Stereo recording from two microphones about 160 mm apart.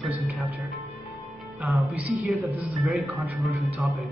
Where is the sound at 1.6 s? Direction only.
Centre (ahead or behind).